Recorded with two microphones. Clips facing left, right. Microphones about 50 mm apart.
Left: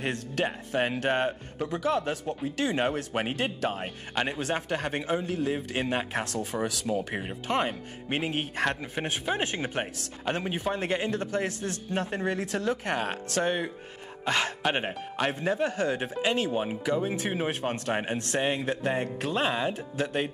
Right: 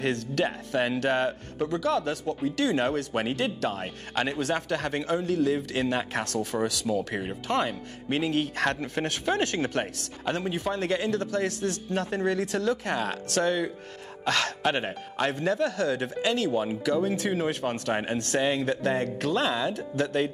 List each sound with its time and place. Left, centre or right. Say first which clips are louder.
0.0 s speech: right 3 dB; left
3.8 s speech: right 1 dB; centre
4.3 s speech: right 2 dB; centre
8.6 s speech: right 2 dB; centre
15.3 s speech: right 1 dB; left
17.9 s speech: right 1 dB; centre
18.3 s speech: right 3 dB; left